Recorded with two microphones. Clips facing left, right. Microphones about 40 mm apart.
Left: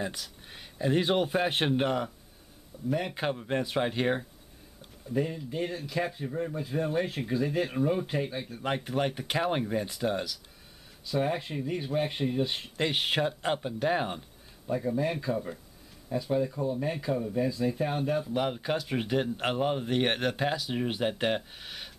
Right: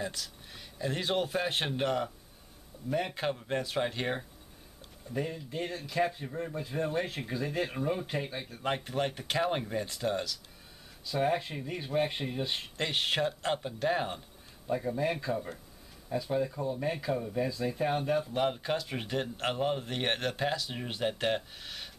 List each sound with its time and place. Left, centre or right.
0.0 s speech: left
2.9 s speech: centre
3.2 s speech: centre
12.8 s speech: centre
14.7 s speech: centre